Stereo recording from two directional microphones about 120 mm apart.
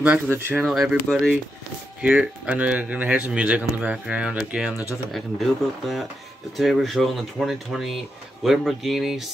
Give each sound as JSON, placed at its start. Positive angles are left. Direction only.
{"t": 0.0, "sound": "a man's voice", "side_deg": -15}
{"t": 0.6, "sound": "speech", "side_deg": 0}
{"t": 2.0, "sound": "a man's voice", "side_deg": -10}